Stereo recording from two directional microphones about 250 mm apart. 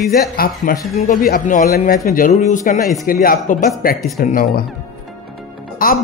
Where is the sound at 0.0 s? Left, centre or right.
Left.